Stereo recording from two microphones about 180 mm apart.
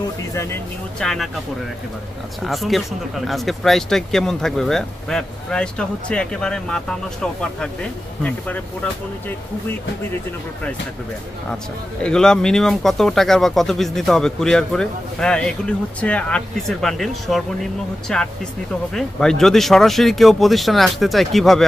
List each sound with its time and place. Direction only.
0.3 s speech: 15° left (ahead or behind)
0.9 s speech: 5° left (ahead or behind)
2.4 s speech: centre (ahead or behind)
12.0 s speech: 5° left (ahead or behind)